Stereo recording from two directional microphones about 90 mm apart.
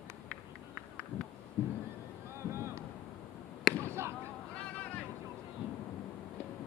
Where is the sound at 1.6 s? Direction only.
25° right (ahead or behind).